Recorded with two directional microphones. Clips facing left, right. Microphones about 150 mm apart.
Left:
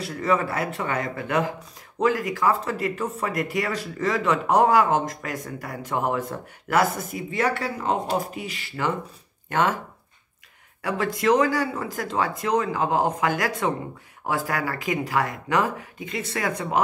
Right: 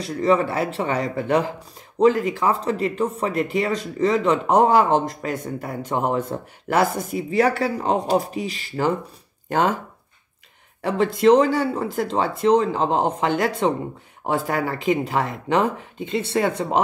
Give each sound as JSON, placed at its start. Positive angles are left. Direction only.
{"t": 0.2, "sound": "speech", "side_deg": -25}
{"t": 10.8, "sound": "speech", "side_deg": -25}